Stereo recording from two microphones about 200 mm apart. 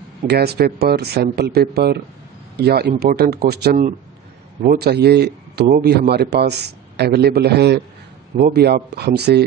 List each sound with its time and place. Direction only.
0.3 s a man's voice: 55° right (ahead or behind)